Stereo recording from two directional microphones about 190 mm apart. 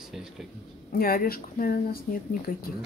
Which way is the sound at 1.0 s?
50° left (ahead or behind).